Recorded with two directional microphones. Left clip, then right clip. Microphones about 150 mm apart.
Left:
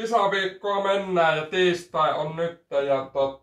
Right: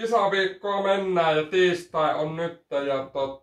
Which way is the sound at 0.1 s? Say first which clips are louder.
Even; 15° right (ahead or behind).